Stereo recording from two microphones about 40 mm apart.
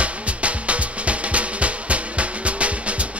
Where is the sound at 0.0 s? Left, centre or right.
Right.